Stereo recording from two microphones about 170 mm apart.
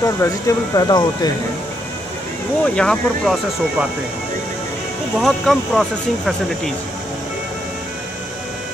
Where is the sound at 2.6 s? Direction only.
5° left (ahead or behind).